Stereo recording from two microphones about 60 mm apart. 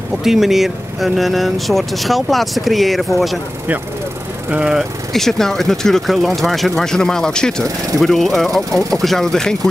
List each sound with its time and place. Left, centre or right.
0.2 s speech: centre
4.5 s speech: centre
5.1 s speech: centre